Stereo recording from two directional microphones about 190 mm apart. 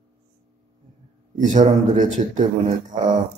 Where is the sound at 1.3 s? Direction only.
40° right (ahead or behind).